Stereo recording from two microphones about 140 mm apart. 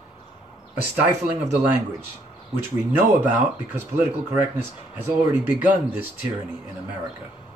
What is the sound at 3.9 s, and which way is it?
Speech, 15° right (ahead or behind).